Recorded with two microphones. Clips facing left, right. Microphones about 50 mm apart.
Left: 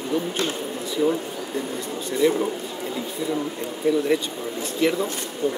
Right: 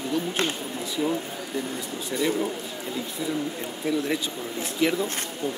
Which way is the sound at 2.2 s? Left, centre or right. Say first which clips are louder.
Left 6 dB; centre.